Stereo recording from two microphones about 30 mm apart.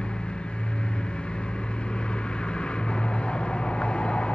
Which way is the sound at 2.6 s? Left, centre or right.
Left.